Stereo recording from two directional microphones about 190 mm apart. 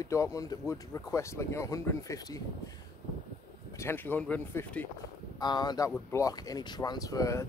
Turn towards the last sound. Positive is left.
turn(degrees=15)  # may be behind; listen again after turning